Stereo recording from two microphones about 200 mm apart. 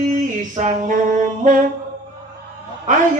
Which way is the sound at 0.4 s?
40° right (ahead or behind).